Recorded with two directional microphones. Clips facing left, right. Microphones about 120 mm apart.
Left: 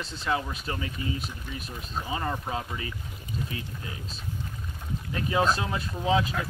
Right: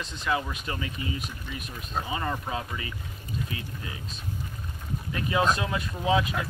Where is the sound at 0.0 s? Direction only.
35° left (ahead or behind).